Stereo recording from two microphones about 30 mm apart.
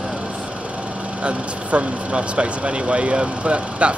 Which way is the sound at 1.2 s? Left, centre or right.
Right.